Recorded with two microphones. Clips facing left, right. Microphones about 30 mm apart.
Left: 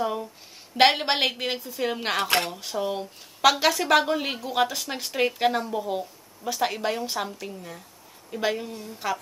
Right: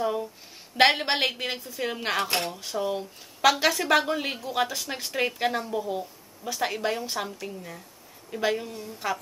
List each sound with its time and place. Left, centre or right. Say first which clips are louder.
0.0 s a sound: even; centre
0.7 s a woman's voice: left 1 dB; centre
2.2 s speech: left 4 dB; left
2.5 s a woman's voice: even; centre